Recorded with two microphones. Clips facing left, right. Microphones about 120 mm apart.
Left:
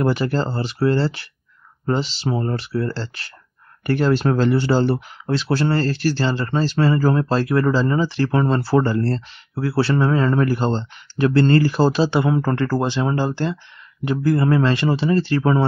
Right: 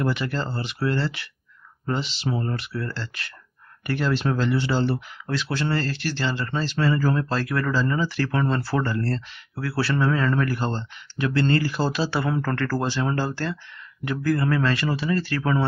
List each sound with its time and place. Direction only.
0.0 s speech: 40° left (ahead or behind)
3.8 s speech: 45° left (ahead or behind); by 11.2 s 25° left (ahead or behind)
11.2 s speech: 40° left (ahead or behind)
12.0 s speech: 25° left (ahead or behind)